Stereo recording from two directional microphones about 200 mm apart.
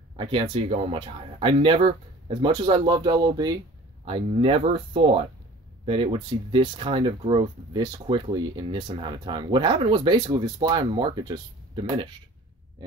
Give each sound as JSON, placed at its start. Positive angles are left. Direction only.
{"t": 0.1, "sound": "speech", "side_deg": -25}